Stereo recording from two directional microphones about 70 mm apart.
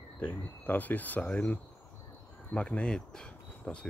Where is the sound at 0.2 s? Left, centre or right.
Left.